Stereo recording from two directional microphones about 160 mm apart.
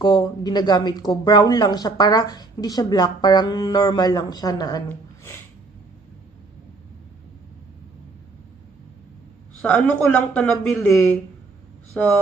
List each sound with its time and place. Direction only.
0.0 s speech: 25° left (ahead or behind)
4.8 s a sound: 15° left (ahead or behind)
9.6 s speech: 5° left (ahead or behind)